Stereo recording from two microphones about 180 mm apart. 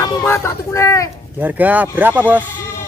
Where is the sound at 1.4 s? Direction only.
10° right (ahead or behind).